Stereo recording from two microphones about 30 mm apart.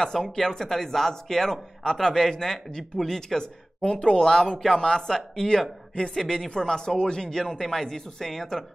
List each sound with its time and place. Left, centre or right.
0.0 s speech: centre
3.8 s speech: left
4.2 s a man's voice: centre
7.5 s speech: centre